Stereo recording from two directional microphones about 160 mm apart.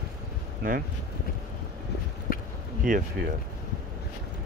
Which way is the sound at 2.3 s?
65° left (ahead or behind).